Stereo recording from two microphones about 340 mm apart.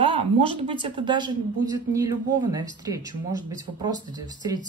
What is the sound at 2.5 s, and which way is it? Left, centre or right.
Speech, centre.